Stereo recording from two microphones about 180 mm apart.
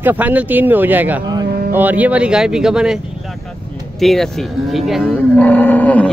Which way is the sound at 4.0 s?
Centre (ahead or behind).